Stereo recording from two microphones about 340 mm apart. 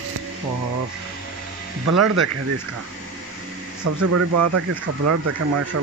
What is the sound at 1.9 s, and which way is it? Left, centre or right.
Speech, right.